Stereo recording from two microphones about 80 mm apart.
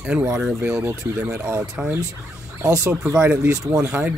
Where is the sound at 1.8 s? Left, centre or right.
Centre.